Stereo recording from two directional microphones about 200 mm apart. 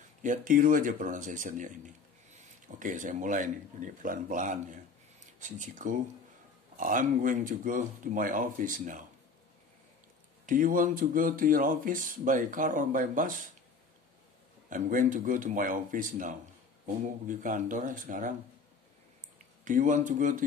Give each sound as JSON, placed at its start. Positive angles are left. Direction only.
{"t": 0.2, "sound": "speech", "side_deg": -40}
{"t": 10.4, "sound": "speech", "side_deg": -40}
{"t": 14.7, "sound": "speech", "side_deg": -40}
{"t": 19.6, "sound": "speech", "side_deg": -40}